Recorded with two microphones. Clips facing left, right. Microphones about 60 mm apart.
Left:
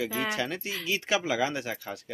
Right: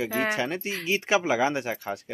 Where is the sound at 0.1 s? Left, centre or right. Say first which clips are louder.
Right 4 dB; right.